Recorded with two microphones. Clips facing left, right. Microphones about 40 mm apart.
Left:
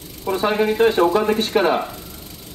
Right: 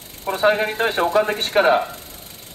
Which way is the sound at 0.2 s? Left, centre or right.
Centre.